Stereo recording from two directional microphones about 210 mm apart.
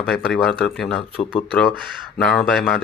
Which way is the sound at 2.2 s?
Centre (ahead or behind).